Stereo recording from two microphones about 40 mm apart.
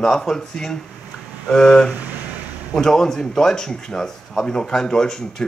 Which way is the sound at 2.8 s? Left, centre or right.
Centre.